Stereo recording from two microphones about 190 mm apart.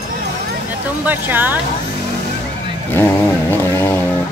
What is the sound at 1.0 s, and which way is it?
Speech, 10° right (ahead or behind).